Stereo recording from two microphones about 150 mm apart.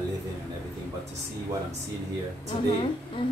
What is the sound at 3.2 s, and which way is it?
Speech, 35° left (ahead or behind).